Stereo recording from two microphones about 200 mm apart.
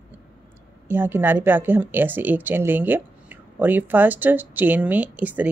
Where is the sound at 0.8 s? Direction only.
10° right (ahead or behind).